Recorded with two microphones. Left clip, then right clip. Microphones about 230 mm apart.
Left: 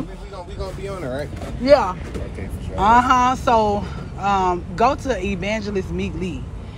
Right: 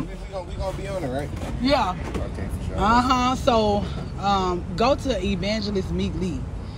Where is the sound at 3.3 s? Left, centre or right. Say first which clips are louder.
Left 3 dB; centre.